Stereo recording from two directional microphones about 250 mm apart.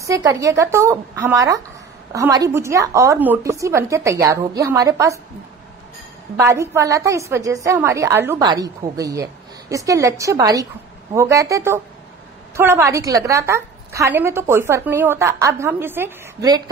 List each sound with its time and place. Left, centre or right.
0.0 s a woman's voice: centre
6.3 s a woman's voice: centre